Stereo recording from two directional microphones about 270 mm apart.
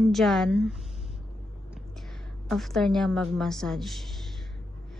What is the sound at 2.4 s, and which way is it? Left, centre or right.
Speech, centre.